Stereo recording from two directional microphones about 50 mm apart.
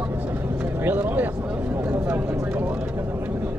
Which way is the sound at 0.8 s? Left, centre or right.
Right.